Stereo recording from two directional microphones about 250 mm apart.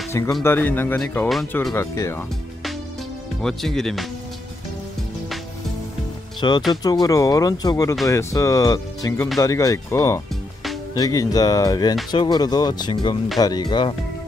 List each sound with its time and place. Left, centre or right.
0.1 s speech: centre
3.4 s speech: centre
6.7 s speech: centre